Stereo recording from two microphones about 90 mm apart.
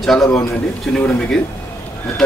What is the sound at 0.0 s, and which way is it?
Speech, 5° left (ahead or behind).